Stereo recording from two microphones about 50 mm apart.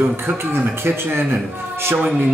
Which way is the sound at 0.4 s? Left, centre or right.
Right.